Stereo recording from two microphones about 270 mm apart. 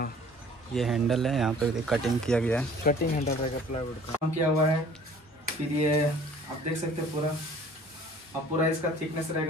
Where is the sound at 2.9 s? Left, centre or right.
Left.